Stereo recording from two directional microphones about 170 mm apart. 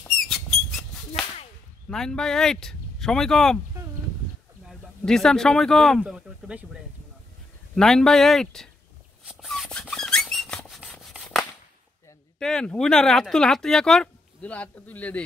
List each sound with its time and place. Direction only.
0.1 s squeak: 5° left (ahead or behind)
1.9 s speech: 5° left (ahead or behind)
3.8 s a sound: 15° right (ahead or behind)
4.6 s speech: 5° left (ahead or behind)
9.2 s squeak: 5° right (ahead or behind)
10.8 s rub: centre (ahead or behind)
12.4 s speech: 5° left (ahead or behind)